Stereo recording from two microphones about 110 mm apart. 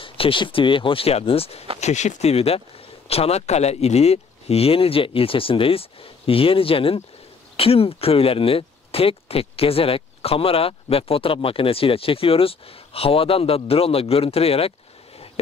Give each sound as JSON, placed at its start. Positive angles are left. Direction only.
{"t": 0.0, "sound": "speech", "side_deg": 50}
{"t": 1.8, "sound": "speech", "side_deg": 90}